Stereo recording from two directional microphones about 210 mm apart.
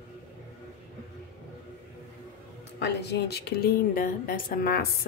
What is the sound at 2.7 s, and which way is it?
A woman's voice, 55° left (ahead or behind).